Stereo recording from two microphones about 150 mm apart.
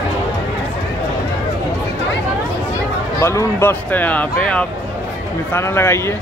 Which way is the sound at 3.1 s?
15° left (ahead or behind).